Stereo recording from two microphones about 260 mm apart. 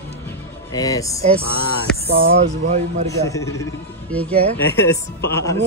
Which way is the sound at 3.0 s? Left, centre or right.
Centre.